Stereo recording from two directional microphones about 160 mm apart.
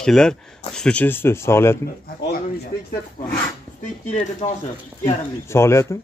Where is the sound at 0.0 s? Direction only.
5° left (ahead or behind).